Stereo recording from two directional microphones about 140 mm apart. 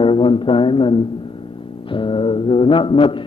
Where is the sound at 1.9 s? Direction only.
35° left (ahead or behind).